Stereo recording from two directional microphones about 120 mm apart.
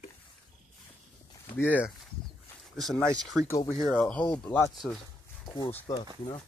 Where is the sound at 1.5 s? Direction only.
15° left (ahead or behind).